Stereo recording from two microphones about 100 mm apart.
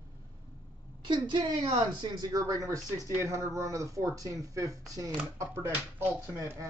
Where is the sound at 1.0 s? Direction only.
50° right (ahead or behind).